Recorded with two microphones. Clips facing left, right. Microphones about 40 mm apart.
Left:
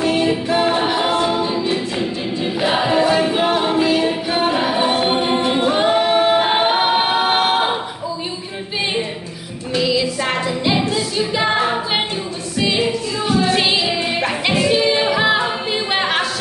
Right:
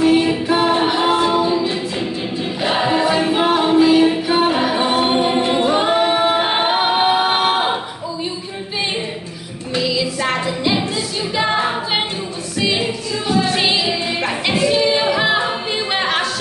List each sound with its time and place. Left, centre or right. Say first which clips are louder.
0.1 s music: right 2 dB; centre
0.7 s a capella: right 2 dB; centre
2.6 s choir: even; centre
3.9 s a capella: right 4 dB; centre
4.6 s choir: even; centre
5.6 s a capella: even; centre
9.8 s music: even; centre
11.3 s singing: right 1 dB; centre
12.5 s music: left 1 dB; centre
15.3 s a capella: even; centre